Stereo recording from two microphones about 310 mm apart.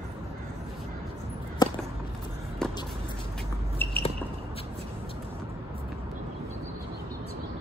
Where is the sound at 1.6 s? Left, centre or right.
Centre.